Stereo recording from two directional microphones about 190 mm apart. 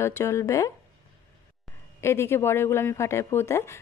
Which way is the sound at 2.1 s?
15° left (ahead or behind).